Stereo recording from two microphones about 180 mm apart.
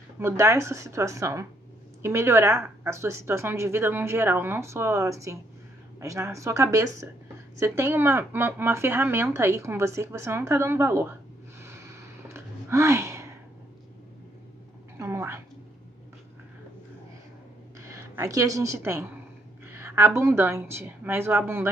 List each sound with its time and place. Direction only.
0.2 s a woman's voice: 15° right (ahead or behind)
11.6 s gasp: 15° right (ahead or behind)
15.0 s a sound: 15° right (ahead or behind)
17.8 s a woman's voice: 15° right (ahead or behind)
19.7 s a sound: 10° right (ahead or behind)
20.2 s a woman's voice: 15° right (ahead or behind)